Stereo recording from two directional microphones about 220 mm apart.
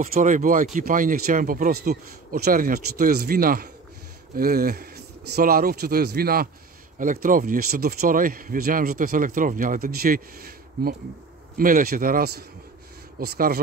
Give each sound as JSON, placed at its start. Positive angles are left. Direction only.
{"t": 0.0, "sound": "a man's voice", "side_deg": -40}